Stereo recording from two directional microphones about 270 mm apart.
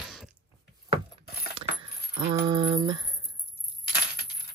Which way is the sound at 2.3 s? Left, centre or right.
Centre.